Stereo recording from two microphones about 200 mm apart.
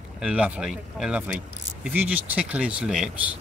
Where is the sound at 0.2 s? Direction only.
5° right (ahead or behind).